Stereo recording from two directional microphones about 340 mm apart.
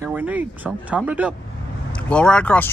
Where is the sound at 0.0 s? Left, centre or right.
Centre.